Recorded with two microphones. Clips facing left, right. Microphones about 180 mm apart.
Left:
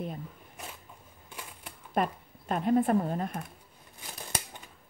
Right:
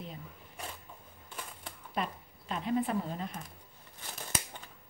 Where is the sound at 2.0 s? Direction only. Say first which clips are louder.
Left 7 dB; 50° left (ahead or behind).